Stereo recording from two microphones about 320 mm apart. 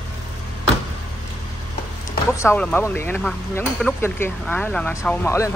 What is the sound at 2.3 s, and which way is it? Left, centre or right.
Speech, centre.